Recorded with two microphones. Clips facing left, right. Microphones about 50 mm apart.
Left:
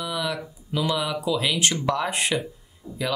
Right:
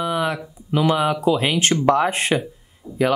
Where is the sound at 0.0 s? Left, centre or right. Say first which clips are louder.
Right 6 dB; right.